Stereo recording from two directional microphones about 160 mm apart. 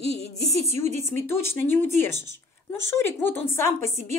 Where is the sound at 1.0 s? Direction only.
15° left (ahead or behind).